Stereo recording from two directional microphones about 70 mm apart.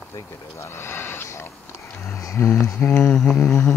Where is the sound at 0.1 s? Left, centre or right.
Left.